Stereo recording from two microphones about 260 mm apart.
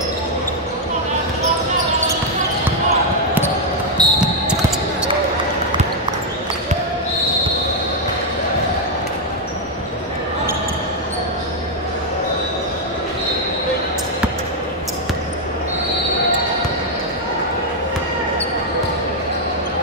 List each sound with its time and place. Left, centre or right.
4.0 s basketball bounce: centre